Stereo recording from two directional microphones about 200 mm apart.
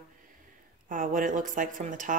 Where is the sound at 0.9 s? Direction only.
40° right (ahead or behind).